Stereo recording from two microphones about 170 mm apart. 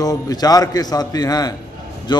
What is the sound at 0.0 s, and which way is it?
A man's voice, 20° left (ahead or behind).